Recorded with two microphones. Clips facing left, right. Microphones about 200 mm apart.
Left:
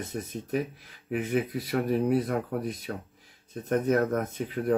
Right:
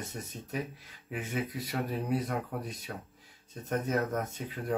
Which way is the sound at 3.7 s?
55° left (ahead or behind).